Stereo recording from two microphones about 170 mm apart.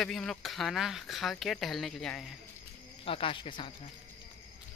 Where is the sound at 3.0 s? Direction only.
30° left (ahead or behind).